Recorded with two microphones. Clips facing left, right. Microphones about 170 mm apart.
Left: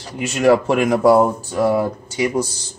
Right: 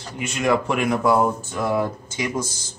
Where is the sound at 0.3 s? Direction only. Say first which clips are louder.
Left 7 dB; 35° left (ahead or behind).